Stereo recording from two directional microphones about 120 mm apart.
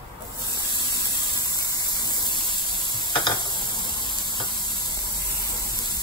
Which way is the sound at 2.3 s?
45° right (ahead or behind).